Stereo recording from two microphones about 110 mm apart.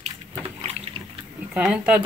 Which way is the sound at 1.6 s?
10° right (ahead or behind).